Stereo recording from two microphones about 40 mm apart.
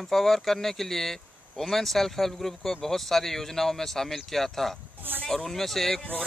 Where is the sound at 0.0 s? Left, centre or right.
Centre.